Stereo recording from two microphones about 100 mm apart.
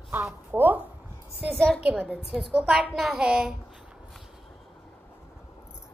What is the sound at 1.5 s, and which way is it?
Speech, 5° left (ahead or behind).